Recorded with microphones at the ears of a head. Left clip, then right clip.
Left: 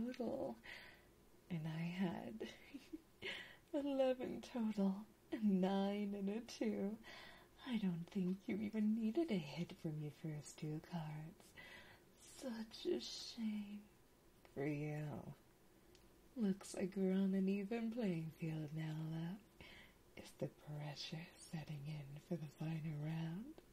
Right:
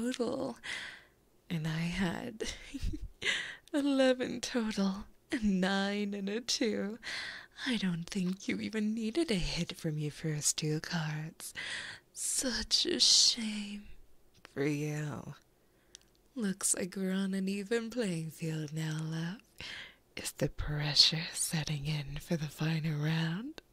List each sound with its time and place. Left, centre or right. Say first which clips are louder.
0.0 s speech: right 10 dB; right